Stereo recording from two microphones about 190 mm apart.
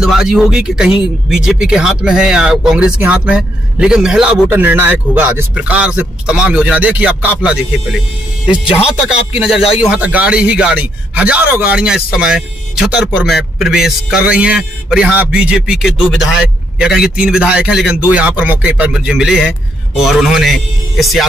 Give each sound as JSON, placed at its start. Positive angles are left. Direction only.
{"t": 0.0, "sound": "speech", "side_deg": -5}
{"t": 9.0, "sound": "speech", "side_deg": -5}
{"t": 9.6, "sound": "speech", "side_deg": 30}
{"t": 9.8, "sound": "speech", "side_deg": -5}